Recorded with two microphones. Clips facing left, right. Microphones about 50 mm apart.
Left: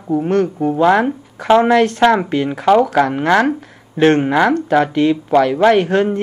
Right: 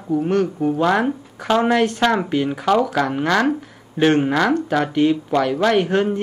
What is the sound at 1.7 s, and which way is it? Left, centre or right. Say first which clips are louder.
Speech: left 5 dB; left.